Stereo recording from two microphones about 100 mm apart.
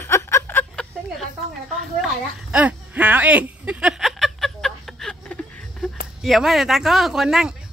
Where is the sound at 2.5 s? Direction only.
15° right (ahead or behind); by 5.8 s 10° left (ahead or behind).